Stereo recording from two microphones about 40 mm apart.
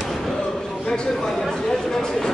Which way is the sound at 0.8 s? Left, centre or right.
Centre.